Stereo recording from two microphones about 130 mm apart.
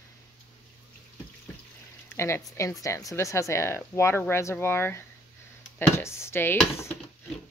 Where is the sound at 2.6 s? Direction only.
25° left (ahead or behind).